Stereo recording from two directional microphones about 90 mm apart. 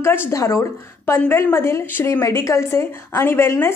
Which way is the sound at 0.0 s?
25° left (ahead or behind).